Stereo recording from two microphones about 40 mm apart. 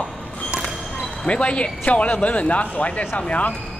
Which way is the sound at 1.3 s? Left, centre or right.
Left.